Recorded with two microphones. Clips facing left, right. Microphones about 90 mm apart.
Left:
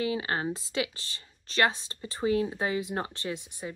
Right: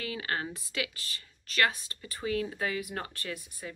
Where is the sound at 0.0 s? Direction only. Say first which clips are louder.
Left 5 dB; 25° left (ahead or behind).